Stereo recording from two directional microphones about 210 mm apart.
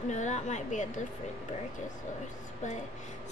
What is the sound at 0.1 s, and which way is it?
Speech, 35° left (ahead or behind).